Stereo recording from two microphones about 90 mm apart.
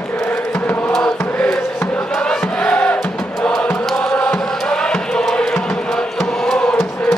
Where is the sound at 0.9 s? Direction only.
5° left (ahead or behind).